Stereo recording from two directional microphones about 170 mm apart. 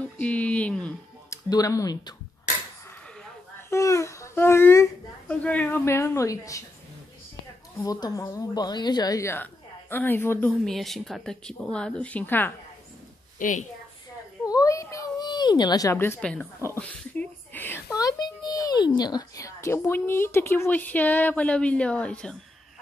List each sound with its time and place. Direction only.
0.2 s a sound: 10° left (ahead or behind)
1.3 s speech: 20° left (ahead or behind)
3.7 s babbling: 15° left (ahead or behind)
5.3 s a woman's voice: 10° left (ahead or behind)
7.8 s a woman's voice: 20° left (ahead or behind)
10.6 s a woman's voice: centre (ahead or behind)
13.4 s a woman's voice: 50° left (ahead or behind)
14.4 s a child's voice: 20° left (ahead or behind)